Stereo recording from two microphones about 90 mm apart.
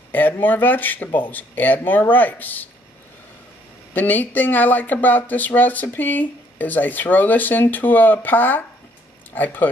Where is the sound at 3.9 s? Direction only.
20° left (ahead or behind).